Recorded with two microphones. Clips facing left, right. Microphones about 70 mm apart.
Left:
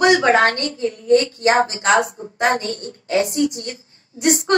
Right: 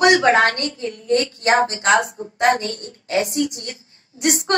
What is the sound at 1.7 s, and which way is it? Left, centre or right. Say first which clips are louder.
A woman's voice: left 1 dB; left.